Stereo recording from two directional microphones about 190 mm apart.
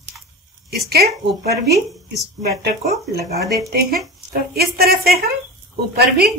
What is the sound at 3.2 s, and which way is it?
A woman's voice, 55° right (ahead or behind).